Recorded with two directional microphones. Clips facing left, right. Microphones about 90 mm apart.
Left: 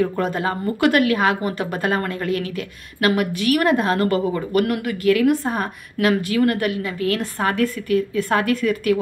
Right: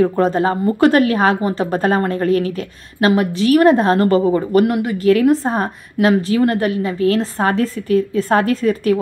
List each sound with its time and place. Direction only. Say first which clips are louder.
0.0 s a woman's voice: right 6 dB; 30° right (ahead or behind)